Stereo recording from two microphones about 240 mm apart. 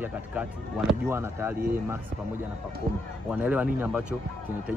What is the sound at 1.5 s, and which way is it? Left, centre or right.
Speech, right.